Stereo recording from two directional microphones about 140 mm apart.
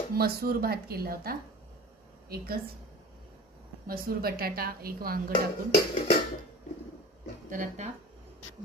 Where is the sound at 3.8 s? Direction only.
90° right.